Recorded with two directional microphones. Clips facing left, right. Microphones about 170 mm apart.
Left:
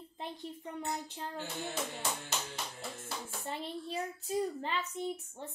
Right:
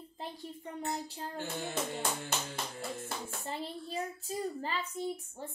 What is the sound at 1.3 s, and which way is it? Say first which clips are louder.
Speech: right 3 dB; 50° right (ahead or behind).